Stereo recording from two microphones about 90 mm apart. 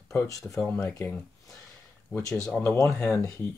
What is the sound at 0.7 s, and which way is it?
Speech, 20° left (ahead or behind).